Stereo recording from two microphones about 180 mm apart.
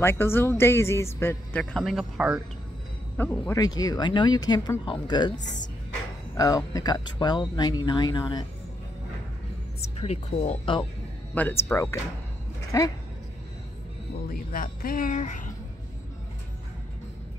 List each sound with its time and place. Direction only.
0.0 s speech: 15° left (ahead or behind); by 2.4 s 5° right (ahead or behind)
3.2 s speech: 10° left (ahead or behind)
9.9 s speech: 35° left (ahead or behind)
11.3 s speech: 10° left (ahead or behind)
14.3 s speech: 55° left (ahead or behind)